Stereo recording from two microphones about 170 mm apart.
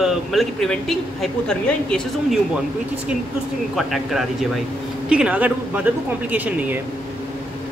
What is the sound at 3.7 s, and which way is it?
Speech, centre (ahead or behind).